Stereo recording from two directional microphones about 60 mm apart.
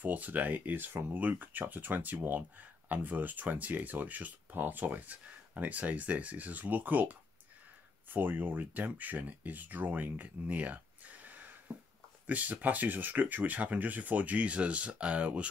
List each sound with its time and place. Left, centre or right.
0.0 s speech: right